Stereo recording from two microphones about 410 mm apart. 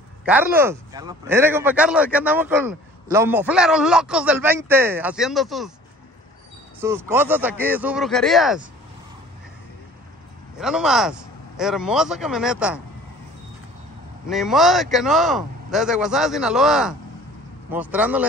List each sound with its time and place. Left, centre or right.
0.2 s speech: centre
6.8 s speech: centre
10.6 s speech: centre
14.3 s speech: centre